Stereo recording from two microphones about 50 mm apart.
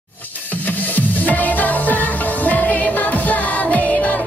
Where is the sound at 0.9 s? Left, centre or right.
Left.